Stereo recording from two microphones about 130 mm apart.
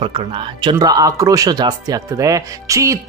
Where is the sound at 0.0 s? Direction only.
40° right (ahead or behind).